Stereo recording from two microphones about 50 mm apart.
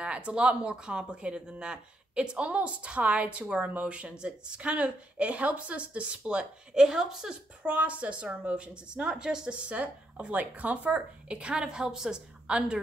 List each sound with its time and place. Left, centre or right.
0.0 s speech: right
7.6 s speech: right